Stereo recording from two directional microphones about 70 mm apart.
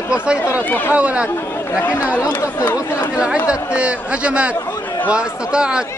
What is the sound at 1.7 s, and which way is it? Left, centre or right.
Speech, left.